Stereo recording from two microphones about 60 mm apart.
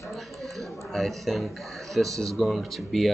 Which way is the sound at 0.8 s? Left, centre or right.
Centre.